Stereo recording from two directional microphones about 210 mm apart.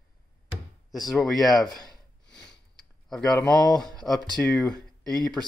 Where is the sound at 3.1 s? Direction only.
Centre (ahead or behind).